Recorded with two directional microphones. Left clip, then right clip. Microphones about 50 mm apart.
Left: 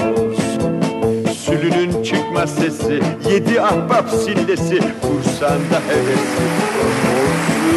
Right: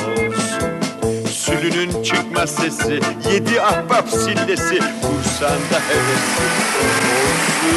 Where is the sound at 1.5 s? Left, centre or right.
Left.